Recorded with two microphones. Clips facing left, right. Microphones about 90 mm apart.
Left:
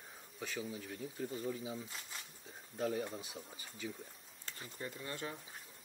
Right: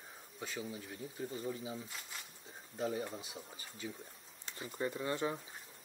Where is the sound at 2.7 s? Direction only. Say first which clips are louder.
Even; 10° right (ahead or behind).